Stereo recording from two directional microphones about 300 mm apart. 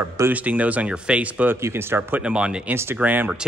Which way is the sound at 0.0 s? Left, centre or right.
Centre.